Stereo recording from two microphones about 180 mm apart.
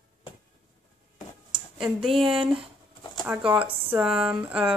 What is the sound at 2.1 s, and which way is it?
Speech, 30° right (ahead or behind).